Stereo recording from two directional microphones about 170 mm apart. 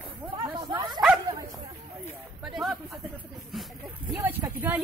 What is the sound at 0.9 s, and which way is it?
Bow-wow, centre (ahead or behind).